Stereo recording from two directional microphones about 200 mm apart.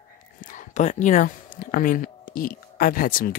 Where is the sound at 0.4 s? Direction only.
40° left (ahead or behind).